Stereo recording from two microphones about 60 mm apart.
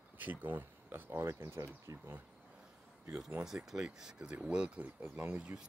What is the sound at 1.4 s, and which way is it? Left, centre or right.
Speech, right.